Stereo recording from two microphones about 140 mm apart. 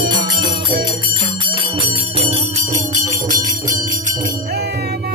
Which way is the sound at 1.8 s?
40° right (ahead or behind).